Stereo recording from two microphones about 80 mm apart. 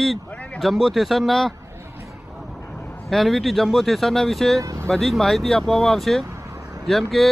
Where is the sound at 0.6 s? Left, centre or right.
Centre.